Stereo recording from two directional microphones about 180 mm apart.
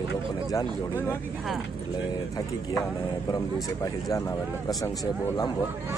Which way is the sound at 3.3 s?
20° left (ahead or behind).